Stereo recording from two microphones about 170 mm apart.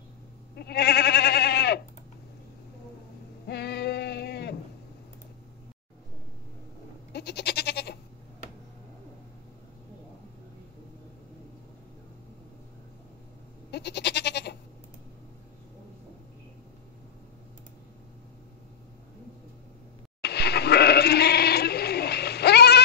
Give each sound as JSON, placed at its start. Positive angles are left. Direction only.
{"t": 0.6, "sound": "goat", "side_deg": 70}
{"t": 3.4, "sound": "a sound", "side_deg": 75}
{"t": 7.1, "sound": "goat", "side_deg": 70}
{"t": 13.7, "sound": "goat", "side_deg": 75}
{"t": 20.2, "sound": "goat", "side_deg": 75}